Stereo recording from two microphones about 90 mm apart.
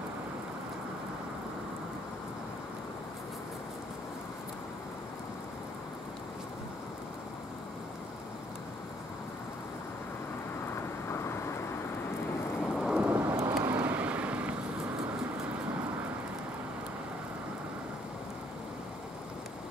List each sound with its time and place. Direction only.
12.7 s thunder: 10° right (ahead or behind); by 13.6 s 25° right (ahead or behind)
13.7 s vehicle: 15° right (ahead or behind)